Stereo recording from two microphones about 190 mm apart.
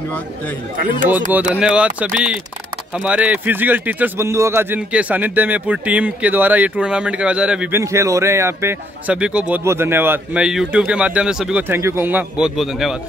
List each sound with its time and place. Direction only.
0.7 s speech: 45° right (ahead or behind)
1.3 s speech: 5° right (ahead or behind)
7.8 s speech: 15° right (ahead or behind)